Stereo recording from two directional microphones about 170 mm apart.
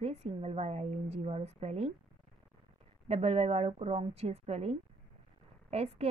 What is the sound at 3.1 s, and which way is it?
A woman's voice, 35° right (ahead or behind).